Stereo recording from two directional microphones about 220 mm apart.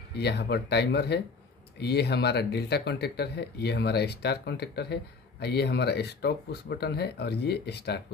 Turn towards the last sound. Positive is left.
turn(degrees=50)  # may be behind; listen again after turning